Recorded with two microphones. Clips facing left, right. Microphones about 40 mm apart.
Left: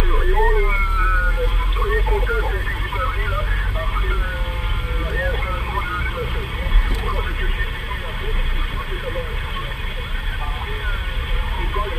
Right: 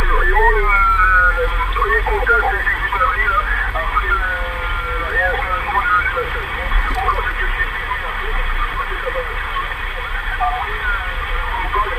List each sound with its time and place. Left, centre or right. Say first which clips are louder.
0.1 s vehicle: right 7 dB; right
1.9 s radio: right 6 dB; right
2.9 s vehicle: right 8 dB; right